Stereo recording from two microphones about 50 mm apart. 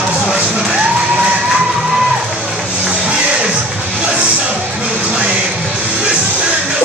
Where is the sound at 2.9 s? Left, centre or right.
Right.